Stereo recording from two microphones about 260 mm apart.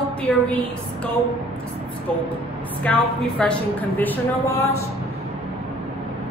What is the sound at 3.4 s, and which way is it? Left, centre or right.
Speech, centre.